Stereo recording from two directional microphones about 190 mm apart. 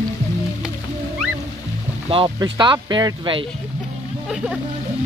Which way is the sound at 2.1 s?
25° right (ahead or behind).